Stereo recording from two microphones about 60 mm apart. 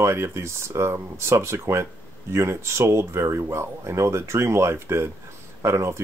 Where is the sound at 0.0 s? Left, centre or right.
Right.